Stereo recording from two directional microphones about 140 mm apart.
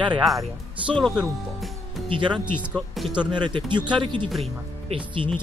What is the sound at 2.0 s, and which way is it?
Speech, 35° right (ahead or behind).